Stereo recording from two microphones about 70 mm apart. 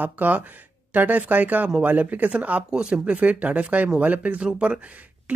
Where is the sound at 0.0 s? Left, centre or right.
Right.